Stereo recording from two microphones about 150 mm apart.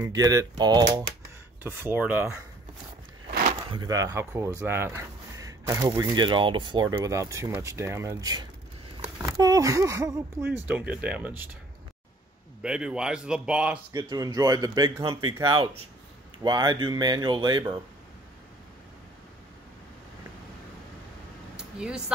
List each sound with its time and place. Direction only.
0.0 s speech: 25° right (ahead or behind)
1.6 s speech: 15° right (ahead or behind)
3.7 s speech: 25° right (ahead or behind)
12.6 s speech: 5° right (ahead or behind)
13.9 s speech: 30° right (ahead or behind)
21.5 s a sound: 5° right (ahead or behind)